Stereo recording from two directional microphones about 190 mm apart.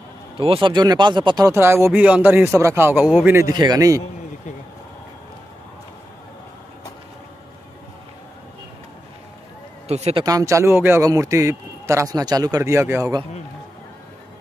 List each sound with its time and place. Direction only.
0.4 s speech: 25° right (ahead or behind)
9.8 s speech: 35° right (ahead or behind)
10.2 s speech: 15° right (ahead or behind)